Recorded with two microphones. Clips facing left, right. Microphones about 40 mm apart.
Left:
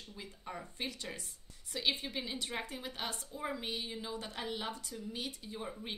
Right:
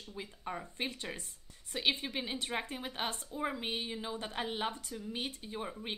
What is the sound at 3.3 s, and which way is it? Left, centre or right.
Speech, right.